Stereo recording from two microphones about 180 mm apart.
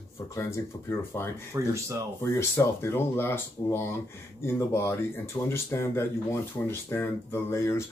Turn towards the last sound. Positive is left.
turn(degrees=15)  # may be behind; listen again after turning